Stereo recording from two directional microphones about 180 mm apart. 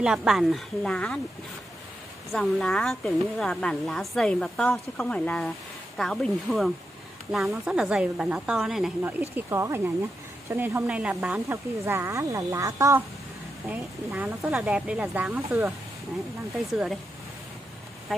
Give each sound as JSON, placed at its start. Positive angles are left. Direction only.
{"t": 0.0, "sound": "a woman's voice", "side_deg": -5}
{"t": 2.3, "sound": "a woman's voice", "side_deg": 5}
{"t": 9.3, "sound": "speech", "side_deg": -15}